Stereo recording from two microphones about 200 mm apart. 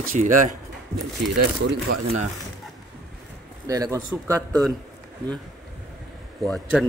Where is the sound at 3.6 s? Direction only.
15° right (ahead or behind).